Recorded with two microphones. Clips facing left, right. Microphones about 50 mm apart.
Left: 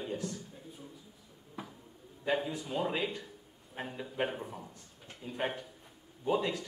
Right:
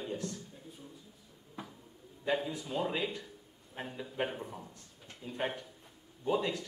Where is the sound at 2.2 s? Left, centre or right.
Centre.